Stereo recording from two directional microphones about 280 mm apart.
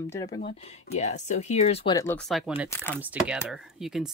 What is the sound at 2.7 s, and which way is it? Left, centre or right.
Speech, centre.